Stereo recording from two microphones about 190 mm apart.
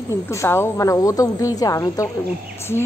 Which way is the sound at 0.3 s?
15° left (ahead or behind).